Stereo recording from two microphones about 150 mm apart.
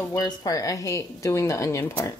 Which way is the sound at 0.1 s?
25° left (ahead or behind).